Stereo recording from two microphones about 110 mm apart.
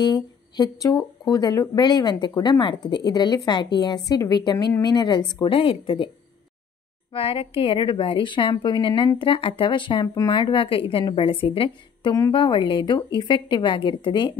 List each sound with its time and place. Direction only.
0.0 s a woman's voice: 40° left (ahead or behind)
7.1 s a woman's voice: 60° left (ahead or behind)